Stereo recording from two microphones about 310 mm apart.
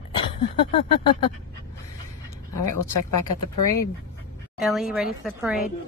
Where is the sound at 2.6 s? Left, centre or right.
Left.